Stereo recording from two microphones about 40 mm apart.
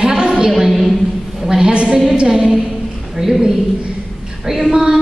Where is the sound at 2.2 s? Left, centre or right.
Centre.